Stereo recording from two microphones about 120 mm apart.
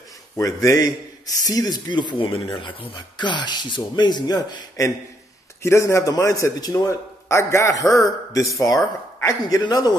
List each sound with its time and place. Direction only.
0.4 s a man's voice: 25° left (ahead or behind)